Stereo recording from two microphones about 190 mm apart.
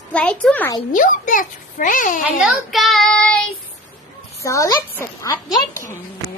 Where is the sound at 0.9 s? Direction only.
45° left (ahead or behind).